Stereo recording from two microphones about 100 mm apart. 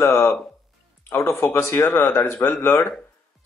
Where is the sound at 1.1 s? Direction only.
30° left (ahead or behind).